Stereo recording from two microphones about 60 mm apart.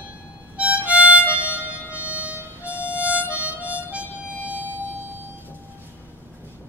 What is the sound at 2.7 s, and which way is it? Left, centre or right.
Harmonica, left.